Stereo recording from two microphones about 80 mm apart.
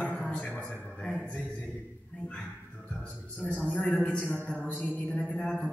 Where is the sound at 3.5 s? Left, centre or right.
Centre.